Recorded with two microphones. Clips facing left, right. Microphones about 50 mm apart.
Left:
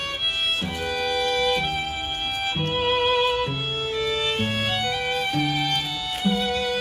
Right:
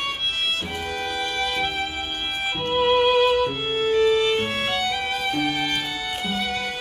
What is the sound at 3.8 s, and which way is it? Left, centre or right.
Music, right.